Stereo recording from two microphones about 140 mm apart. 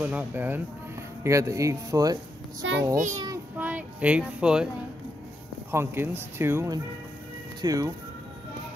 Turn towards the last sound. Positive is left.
turn(degrees=-25)  # may be behind; listen again after turning